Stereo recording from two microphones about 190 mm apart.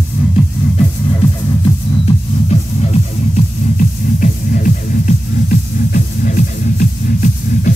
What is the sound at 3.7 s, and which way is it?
Music, 45° left (ahead or behind).